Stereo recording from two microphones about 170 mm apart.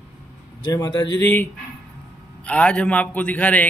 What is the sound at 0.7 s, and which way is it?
A man's voice, 20° left (ahead or behind).